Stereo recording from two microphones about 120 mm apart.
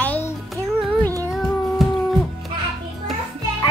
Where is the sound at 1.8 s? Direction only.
Centre (ahead or behind).